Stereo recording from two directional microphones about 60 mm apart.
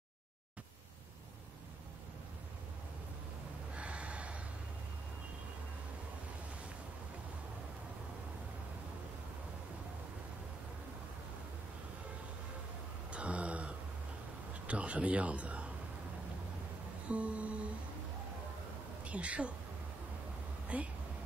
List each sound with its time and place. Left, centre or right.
3.7 s snort: centre
13.1 s a sound: centre
14.5 s a man's voice: right
17.1 s music: right
19.0 s speech: right
20.6 s a sound: right